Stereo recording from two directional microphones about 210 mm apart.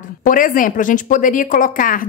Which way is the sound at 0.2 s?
40° left (ahead or behind).